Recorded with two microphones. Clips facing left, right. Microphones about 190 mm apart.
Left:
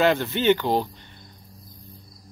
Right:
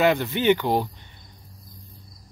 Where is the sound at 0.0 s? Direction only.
15° right (ahead or behind).